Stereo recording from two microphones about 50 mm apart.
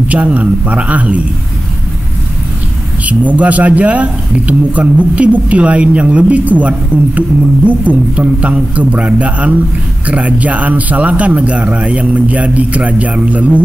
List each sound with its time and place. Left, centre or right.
0.1 s a man's voice: right
3.1 s a man's voice: right